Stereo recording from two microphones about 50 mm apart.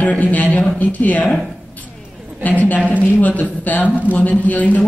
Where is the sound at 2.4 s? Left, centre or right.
Left.